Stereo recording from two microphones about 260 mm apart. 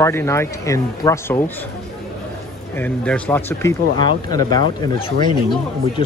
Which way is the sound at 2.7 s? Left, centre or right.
Centre.